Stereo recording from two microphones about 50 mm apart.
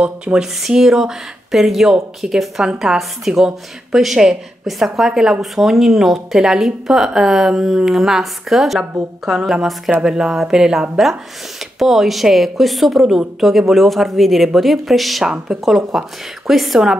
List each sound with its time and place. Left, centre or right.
0.0 s speech: right
0.4 s speech: centre